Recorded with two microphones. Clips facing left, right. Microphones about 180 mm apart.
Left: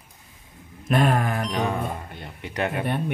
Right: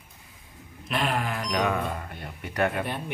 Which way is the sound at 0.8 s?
45° left (ahead or behind).